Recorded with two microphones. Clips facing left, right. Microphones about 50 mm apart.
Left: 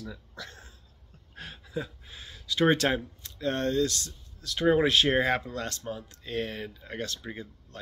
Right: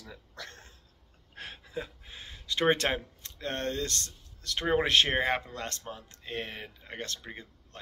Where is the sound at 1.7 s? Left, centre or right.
Right.